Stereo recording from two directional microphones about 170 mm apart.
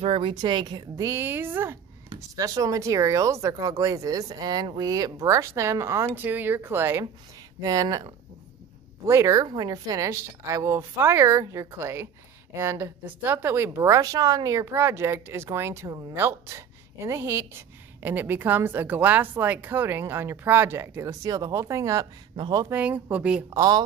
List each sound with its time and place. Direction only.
0.0 s a woman's voice: 30° right (ahead or behind)
22.8 s a woman's voice: 10° right (ahead or behind)
23.5 s speech: 20° right (ahead or behind)